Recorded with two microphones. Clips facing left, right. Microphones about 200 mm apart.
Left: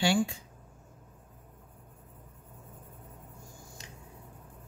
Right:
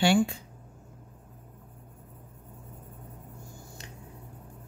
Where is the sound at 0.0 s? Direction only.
60° right (ahead or behind).